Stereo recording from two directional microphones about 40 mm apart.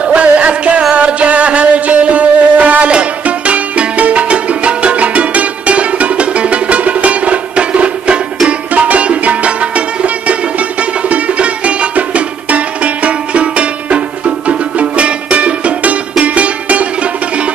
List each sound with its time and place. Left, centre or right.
0.0 s music: right